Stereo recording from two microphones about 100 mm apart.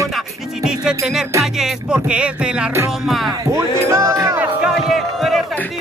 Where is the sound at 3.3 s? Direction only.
30° right (ahead or behind).